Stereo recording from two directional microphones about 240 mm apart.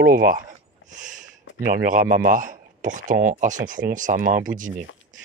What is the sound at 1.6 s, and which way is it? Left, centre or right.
Speech, right.